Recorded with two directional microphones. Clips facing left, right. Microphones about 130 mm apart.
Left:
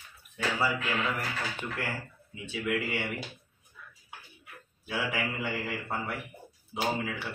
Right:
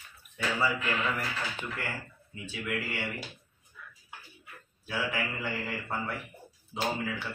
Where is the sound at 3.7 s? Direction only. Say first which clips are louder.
Right 1 dB; 25° left (ahead or behind).